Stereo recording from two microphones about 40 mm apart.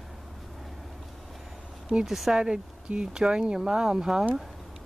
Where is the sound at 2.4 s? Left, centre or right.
Right.